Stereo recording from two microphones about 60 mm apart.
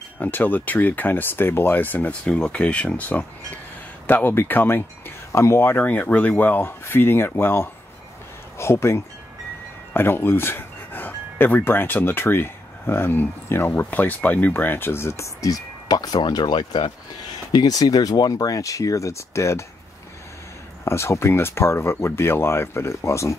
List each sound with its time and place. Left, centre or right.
0.2 s speech: left
2.2 s speech: centre; by 16.1 s left
17.6 s speech: left
20.8 s speech: left